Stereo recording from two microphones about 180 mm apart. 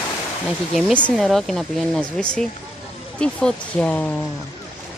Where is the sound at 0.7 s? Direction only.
5° left (ahead or behind).